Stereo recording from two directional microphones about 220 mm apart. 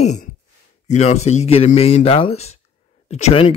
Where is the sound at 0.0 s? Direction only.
30° left (ahead or behind).